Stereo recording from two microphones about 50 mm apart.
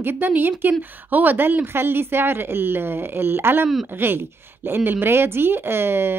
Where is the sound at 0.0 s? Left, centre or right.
Right.